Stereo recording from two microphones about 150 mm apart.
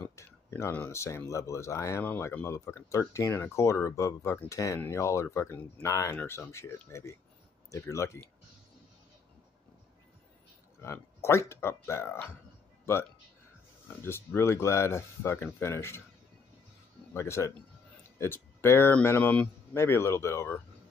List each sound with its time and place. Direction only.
0.0 s speech: 15° left (ahead or behind)
11.2 s speech: 15° left (ahead or behind)
14.0 s speech: 15° left (ahead or behind)
17.1 s speech: 20° left (ahead or behind)